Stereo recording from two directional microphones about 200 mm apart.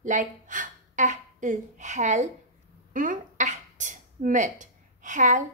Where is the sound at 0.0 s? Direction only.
40° right (ahead or behind).